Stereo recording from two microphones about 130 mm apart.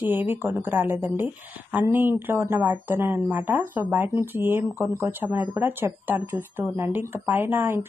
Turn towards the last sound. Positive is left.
turn(degrees=-20)  # may be behind; listen again after turning